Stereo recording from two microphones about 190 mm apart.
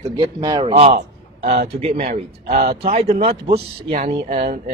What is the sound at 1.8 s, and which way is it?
Speech, 30° right (ahead or behind).